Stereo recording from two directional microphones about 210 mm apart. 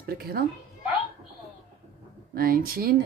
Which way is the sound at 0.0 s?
45° right (ahead or behind).